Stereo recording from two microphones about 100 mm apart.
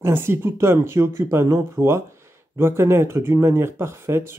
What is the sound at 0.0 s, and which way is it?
Speech, 25° right (ahead or behind).